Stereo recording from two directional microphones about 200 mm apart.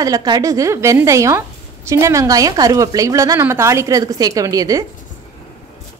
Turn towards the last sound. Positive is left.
turn(degrees=-15)  # may be behind; listen again after turning